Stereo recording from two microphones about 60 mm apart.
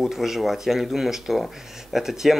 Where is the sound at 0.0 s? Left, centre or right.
Centre.